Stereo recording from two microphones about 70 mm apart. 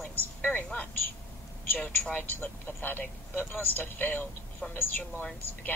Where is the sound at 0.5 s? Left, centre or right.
Centre.